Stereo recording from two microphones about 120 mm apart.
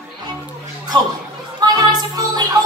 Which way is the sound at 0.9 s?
35° right (ahead or behind).